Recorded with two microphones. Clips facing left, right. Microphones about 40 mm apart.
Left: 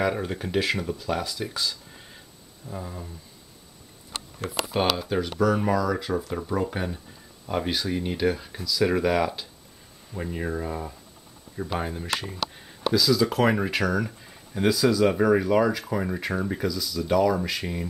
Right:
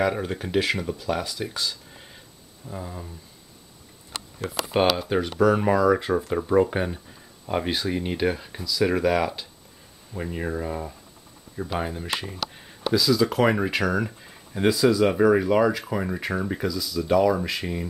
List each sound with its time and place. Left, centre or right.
0.0 s speech: centre
4.9 s speech: centre
15.1 s speech: centre